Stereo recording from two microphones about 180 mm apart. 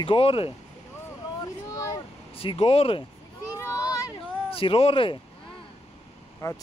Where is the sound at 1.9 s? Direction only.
30° left (ahead or behind).